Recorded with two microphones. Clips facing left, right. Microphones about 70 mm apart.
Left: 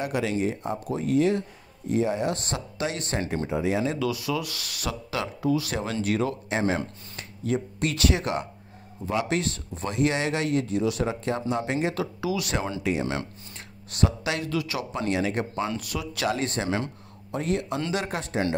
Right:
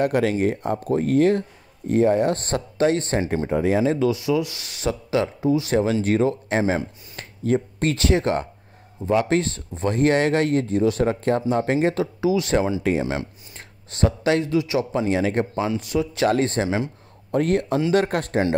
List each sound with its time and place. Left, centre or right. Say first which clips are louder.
0.0 s speech: right 6 dB; right
13.0 s speech: right 3 dB; centre
13.8 s speech: right 6 dB; right
15.5 s speech: right 5 dB; centre
15.8 s speech: right 8 dB; right
16.6 s speech: right 4 dB; centre
17.3 s speech: right 7 dB; right